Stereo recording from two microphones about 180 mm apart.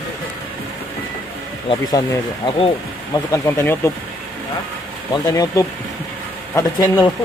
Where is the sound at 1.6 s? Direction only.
20° left (ahead or behind).